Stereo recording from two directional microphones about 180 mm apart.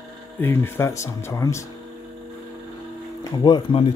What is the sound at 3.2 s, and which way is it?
Speech, 25° left (ahead or behind).